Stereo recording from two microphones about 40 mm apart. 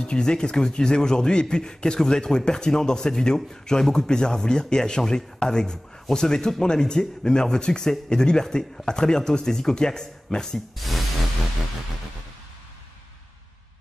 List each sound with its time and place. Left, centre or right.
0.0 s speech: centre
10.8 s music: centre